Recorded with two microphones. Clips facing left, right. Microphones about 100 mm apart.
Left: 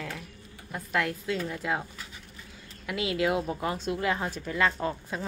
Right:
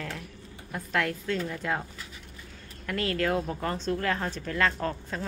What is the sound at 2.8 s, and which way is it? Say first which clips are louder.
Speech: even; 10° left (ahead or behind).